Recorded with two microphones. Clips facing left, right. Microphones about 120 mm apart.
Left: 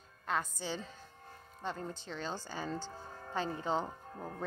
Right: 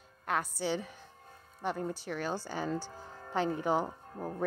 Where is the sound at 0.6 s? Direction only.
15° right (ahead or behind).